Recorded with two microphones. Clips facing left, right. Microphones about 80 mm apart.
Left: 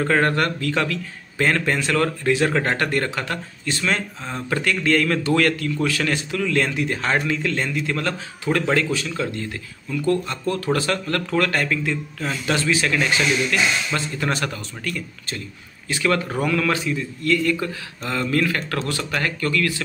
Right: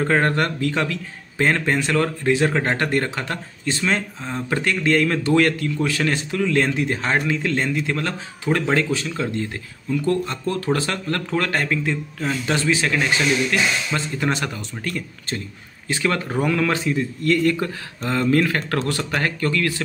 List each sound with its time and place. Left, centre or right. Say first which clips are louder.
0.0 s a man's voice: even; right
4.2 s a man's voice: right 1 dB; centre
14.8 s speech: right 2 dB; right
19.0 s a man's voice: right 1 dB; right